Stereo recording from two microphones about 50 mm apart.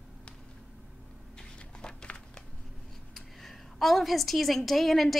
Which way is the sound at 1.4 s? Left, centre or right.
Centre.